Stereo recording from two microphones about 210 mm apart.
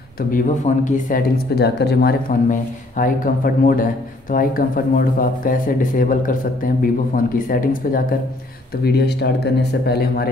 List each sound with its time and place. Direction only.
0.3 s speech: 40° left (ahead or behind)